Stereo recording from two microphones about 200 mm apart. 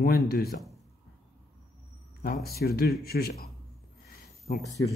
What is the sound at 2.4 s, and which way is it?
Speech, 50° left (ahead or behind).